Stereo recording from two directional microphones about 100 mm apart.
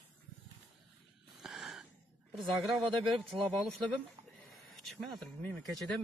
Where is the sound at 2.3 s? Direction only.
Centre (ahead or behind).